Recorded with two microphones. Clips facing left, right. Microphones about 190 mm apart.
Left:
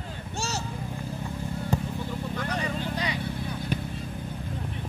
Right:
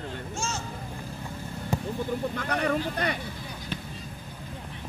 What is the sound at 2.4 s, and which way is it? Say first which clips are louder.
Vehicle: right 2 dB; 60° right (ahead or behind).